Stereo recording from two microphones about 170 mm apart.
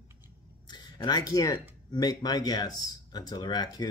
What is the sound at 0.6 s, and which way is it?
Speech, 25° left (ahead or behind).